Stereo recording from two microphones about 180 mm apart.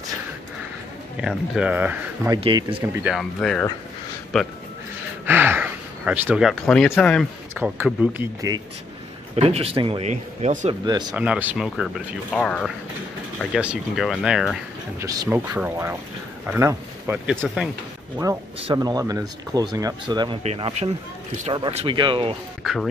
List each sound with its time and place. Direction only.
1.1 s speech: 5° right (ahead or behind)
2.3 s speech: 25° right (ahead or behind)
2.8 s speech: 5° right (ahead or behind)
5.2 s speech: 10° right (ahead or behind)
7.5 s speech: 10° right (ahead or behind)
9.3 s speech: 35° right (ahead or behind)
10.7 s speech: 25° right (ahead or behind)
11.1 s speech: 10° right (ahead or behind)
15.0 s speech: 20° right (ahead or behind)
15.2 s speech: 10° right (ahead or behind); by 22.3 s 30° right (ahead or behind)
22.6 s a sound: centre (ahead or behind)